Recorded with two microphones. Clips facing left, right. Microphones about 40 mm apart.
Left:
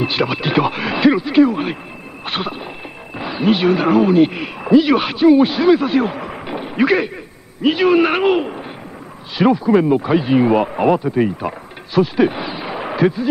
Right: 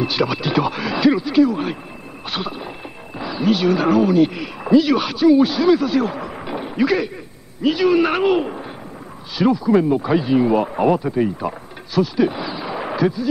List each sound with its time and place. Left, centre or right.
0.0 s speech: left
2.2 s a sound: left
3.2 s speech: left